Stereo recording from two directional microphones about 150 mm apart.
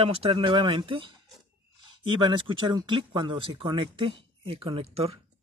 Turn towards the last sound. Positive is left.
turn(degrees=-40)  # may be behind; listen again after turning